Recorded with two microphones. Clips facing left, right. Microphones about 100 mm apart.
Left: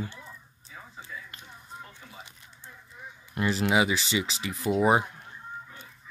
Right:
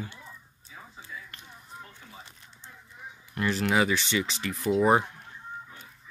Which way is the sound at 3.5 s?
10° left (ahead or behind).